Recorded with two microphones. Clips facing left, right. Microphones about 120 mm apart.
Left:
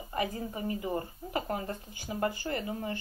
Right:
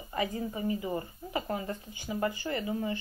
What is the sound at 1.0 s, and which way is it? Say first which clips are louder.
Speech: left 1 dB; 45° left (ahead or behind).